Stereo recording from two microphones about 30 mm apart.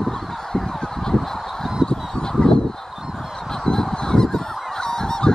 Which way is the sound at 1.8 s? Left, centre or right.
Left.